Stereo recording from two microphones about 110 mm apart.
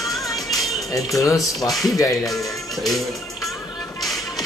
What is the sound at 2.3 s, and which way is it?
Speech, centre (ahead or behind).